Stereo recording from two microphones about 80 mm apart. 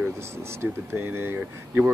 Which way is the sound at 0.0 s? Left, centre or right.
Right.